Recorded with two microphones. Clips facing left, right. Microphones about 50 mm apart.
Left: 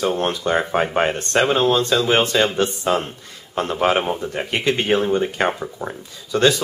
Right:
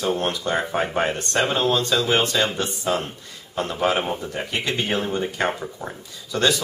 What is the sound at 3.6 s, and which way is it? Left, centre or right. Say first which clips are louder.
Speech: left 3 dB; left.